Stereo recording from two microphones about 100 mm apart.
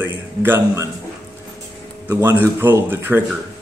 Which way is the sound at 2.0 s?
25° right (ahead or behind).